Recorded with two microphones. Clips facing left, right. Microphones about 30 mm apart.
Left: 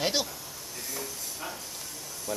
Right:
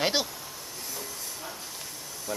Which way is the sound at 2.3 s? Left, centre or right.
Centre.